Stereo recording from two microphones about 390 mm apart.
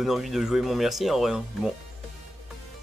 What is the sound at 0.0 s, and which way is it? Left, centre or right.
Speech, centre.